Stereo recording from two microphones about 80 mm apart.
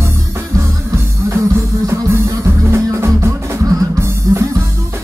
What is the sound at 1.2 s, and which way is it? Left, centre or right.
Music, right.